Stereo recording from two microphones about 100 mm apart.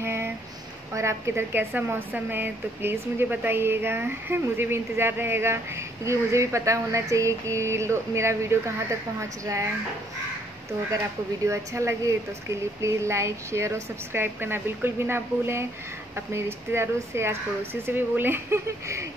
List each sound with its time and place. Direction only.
0.0 s a sound: 25° right (ahead or behind)
0.9 s a woman's voice: 30° right (ahead or behind)
11.4 s a woman's voice: 30° right (ahead or behind)